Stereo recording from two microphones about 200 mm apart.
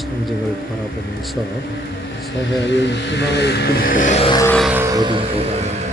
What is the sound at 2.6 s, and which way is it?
Speech, 60° left (ahead or behind).